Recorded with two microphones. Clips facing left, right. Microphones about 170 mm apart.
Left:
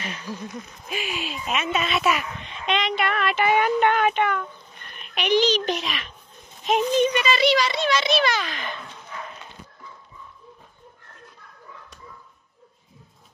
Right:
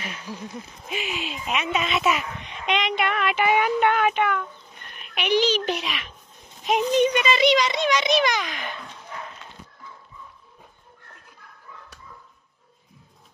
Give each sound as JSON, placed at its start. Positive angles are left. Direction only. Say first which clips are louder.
{"t": 0.8, "sound": "a child's voice", "louder": "even", "side_deg": -20}